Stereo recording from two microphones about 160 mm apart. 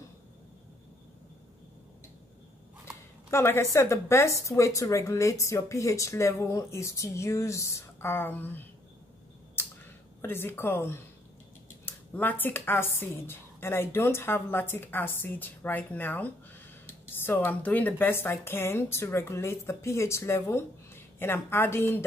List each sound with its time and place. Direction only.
3.3 s a woman's voice: 15° left (ahead or behind)
10.2 s a woman's voice: 15° left (ahead or behind)